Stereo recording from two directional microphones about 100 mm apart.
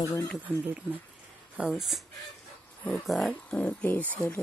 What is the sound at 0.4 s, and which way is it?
Speech, 15° right (ahead or behind).